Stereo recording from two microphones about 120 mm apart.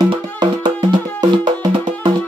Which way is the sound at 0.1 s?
40° right (ahead or behind).